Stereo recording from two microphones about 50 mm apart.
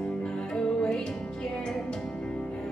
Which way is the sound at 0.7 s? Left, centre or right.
Centre.